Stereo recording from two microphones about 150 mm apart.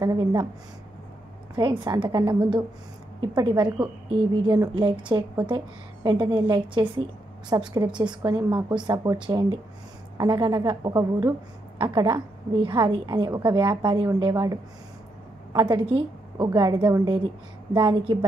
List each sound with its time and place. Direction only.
0.0 s a woman's voice: 25° right (ahead or behind)
1.5 s a woman's voice: 30° right (ahead or behind)